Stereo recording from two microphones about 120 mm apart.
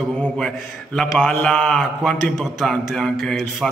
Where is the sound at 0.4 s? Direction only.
5° left (ahead or behind).